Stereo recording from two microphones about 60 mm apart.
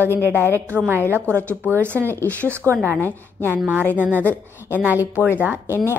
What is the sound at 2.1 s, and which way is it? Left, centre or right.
Speech, left.